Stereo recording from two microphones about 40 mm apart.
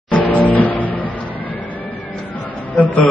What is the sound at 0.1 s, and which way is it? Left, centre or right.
Music, left.